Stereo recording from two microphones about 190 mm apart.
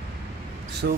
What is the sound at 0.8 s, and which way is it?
Speech, 65° right (ahead or behind).